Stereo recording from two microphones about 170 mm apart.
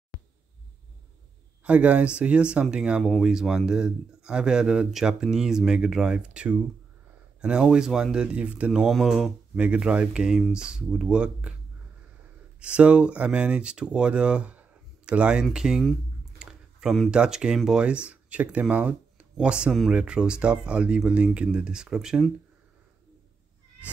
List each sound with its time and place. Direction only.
0.1 s a sound: 20° right (ahead or behind)
1.6 s speech: 5° right (ahead or behind)
12.5 s speech: 5° right (ahead or behind)